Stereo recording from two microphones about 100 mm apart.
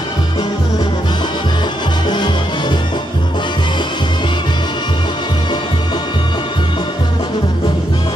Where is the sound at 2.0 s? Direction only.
45° left (ahead or behind).